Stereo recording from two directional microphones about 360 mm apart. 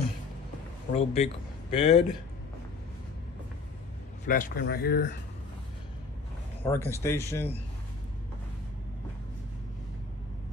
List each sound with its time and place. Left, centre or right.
0.9 s speech: centre
4.3 s speech: left
6.6 s speech: centre